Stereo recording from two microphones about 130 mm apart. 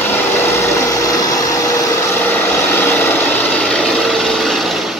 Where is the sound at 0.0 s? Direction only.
15° left (ahead or behind).